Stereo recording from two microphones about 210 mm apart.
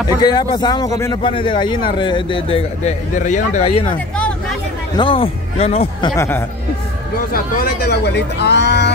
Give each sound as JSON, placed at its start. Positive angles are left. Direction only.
{"t": 0.2, "sound": "speech", "side_deg": 20}
{"t": 4.9, "sound": "speech", "side_deg": 25}
{"t": 7.3, "sound": "speech", "side_deg": 45}